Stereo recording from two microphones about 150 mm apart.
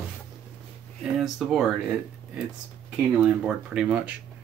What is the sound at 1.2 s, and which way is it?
Speech, centre (ahead or behind).